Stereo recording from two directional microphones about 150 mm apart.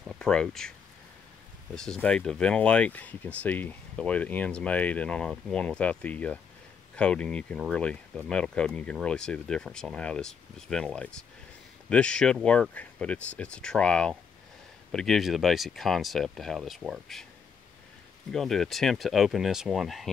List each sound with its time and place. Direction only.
0.2 s speech: 5° left (ahead or behind)
1.8 s speech: 5° left (ahead or behind)
18.3 s speech: centre (ahead or behind)